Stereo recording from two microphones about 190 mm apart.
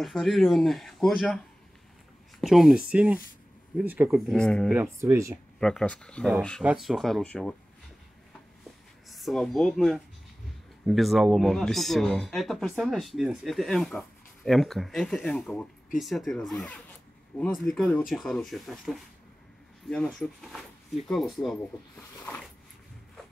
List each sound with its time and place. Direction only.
0.0 s speech: centre (ahead or behind)
2.4 s speech: centre (ahead or behind)
5.0 s speech: 15° right (ahead or behind)
5.6 s speech: 5° left (ahead or behind)
9.1 s speech: centre (ahead or behind)
22.2 s zipper: 10° left (ahead or behind)